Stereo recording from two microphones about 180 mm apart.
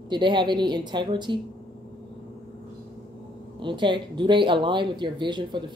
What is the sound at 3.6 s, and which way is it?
Speech, 25° right (ahead or behind).